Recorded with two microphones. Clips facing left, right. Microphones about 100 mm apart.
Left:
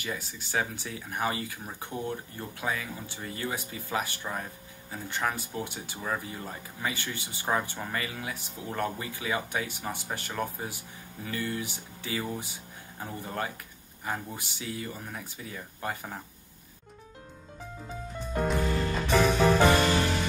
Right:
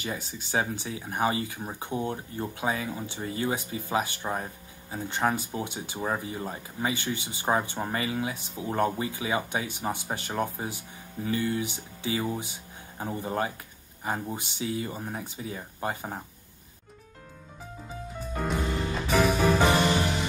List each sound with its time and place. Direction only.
0.0 s speech: 25° right (ahead or behind)
18.5 s music: centre (ahead or behind)
19.7 s music: 20° right (ahead or behind)